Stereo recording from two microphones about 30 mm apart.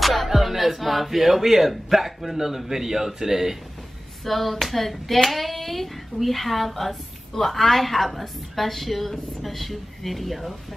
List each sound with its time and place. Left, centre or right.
0.0 s speech: centre
4.2 s hands: centre